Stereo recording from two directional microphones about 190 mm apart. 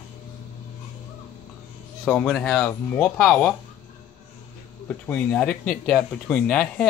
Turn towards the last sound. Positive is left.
turn(degrees=5)  # may be behind; listen again after turning